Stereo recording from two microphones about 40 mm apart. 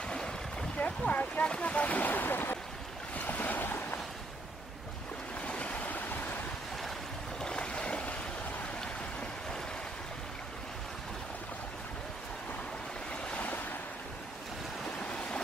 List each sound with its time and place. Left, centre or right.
0.1 s a sound: centre
0.7 s a sound: left
1.4 s speech: left
3.2 s boat: left
5.4 s stream: left
7.3 s boat: left
13.1 s waves: left
15.0 s stream: left